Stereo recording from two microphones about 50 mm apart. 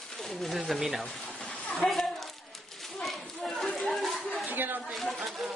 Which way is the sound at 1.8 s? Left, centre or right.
Left.